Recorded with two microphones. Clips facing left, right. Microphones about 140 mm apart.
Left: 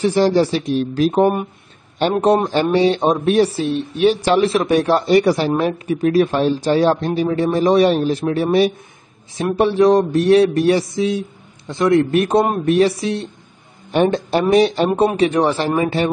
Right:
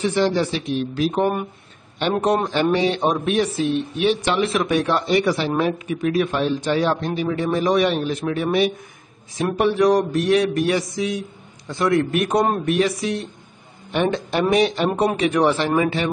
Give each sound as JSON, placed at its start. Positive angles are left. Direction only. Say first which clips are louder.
{"t": 0.0, "sound": "a man's voice", "louder": "left 5 dB", "side_deg": 35}